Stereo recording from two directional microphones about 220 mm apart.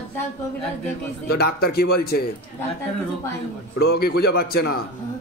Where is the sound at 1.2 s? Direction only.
45° left (ahead or behind).